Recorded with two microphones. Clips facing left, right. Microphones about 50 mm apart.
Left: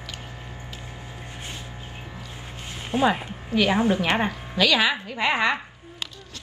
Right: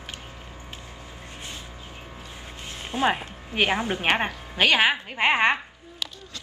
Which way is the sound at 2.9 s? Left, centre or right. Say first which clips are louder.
Left 2 dB; left.